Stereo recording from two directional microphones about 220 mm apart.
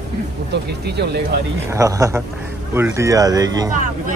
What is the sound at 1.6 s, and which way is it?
Speech, 15° right (ahead or behind).